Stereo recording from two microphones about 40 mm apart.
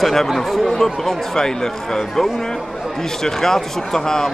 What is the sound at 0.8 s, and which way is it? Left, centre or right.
Speech, centre.